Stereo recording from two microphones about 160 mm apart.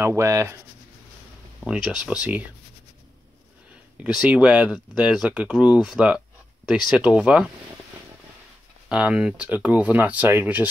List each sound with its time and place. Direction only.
0.0 s speech: 20° right (ahead or behind)
1.7 s speech: 5° right (ahead or behind)
4.0 s speech: 5° right (ahead or behind)
8.8 s speech: 5° right (ahead or behind)